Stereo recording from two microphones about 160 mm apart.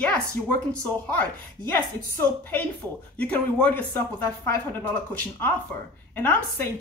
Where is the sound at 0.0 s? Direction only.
10° left (ahead or behind).